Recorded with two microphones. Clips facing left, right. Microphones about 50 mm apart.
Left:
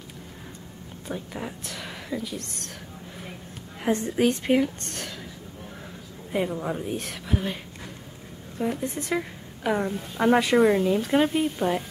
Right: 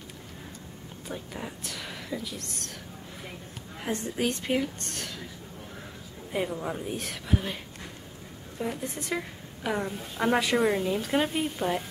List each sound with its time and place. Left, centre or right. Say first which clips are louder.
1.0 s speech: left 4 dB; centre
3.8 s a woman's voice: left 7 dB; centre
6.3 s a woman's voice: left 3 dB; centre